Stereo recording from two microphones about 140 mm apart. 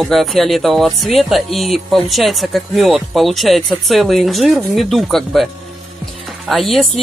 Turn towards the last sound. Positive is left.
turn(degrees=0)  # may be behind; listen again after turning